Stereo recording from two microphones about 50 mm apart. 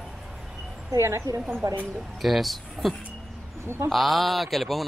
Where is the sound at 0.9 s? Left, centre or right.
Right.